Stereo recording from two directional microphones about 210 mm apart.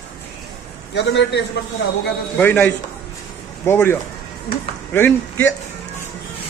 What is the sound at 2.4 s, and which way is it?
A man's voice, 5° left (ahead or behind).